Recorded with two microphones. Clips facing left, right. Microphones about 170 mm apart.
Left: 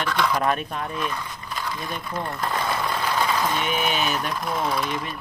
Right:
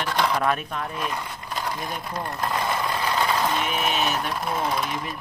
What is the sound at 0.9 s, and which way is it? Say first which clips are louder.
Speech: left 1 dB; 30° right (ahead or behind).